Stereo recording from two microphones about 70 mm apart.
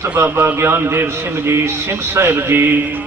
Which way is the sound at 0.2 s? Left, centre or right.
Right.